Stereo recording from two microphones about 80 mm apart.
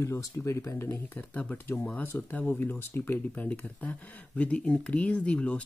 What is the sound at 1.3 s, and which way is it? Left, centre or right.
Speech, centre.